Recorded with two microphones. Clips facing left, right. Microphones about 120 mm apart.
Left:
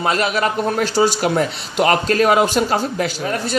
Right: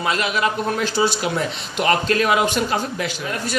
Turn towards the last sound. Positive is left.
turn(degrees=35)  # may be behind; listen again after turning